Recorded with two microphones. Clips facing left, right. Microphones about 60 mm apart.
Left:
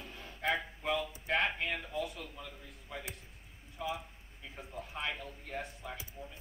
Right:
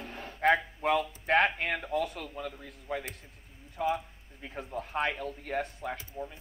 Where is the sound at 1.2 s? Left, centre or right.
Right.